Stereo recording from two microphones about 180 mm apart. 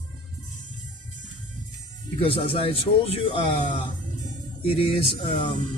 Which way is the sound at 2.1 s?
30° left (ahead or behind).